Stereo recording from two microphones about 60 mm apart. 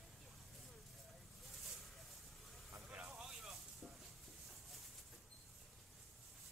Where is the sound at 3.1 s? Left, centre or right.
Centre.